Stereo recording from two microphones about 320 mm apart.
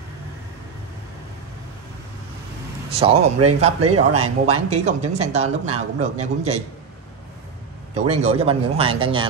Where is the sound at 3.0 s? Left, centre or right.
Centre.